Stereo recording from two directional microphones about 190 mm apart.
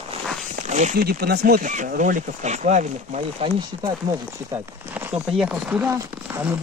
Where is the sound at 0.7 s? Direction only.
40° right (ahead or behind).